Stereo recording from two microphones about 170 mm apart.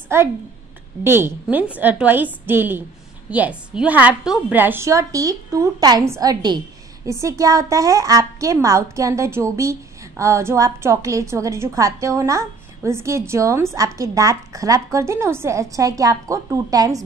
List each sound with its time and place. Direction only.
0.1 s a woman's voice: 15° right (ahead or behind)